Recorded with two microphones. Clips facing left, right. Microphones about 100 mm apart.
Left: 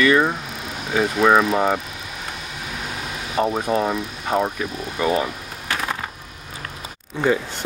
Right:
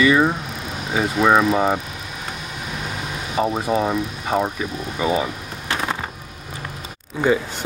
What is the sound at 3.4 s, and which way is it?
Speech, 5° right (ahead or behind).